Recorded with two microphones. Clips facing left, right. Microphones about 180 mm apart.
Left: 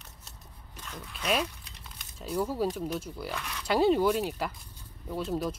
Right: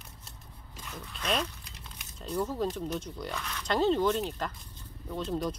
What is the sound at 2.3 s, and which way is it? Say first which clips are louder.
Speech: left 2 dB; 10° left (ahead or behind).